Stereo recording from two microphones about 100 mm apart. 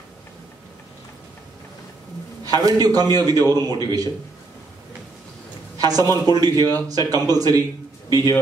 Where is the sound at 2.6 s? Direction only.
40° right (ahead or behind).